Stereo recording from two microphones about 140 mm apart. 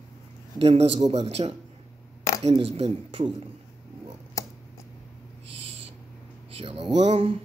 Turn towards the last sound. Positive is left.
turn(degrees=-45)  # may be behind; listen again after turning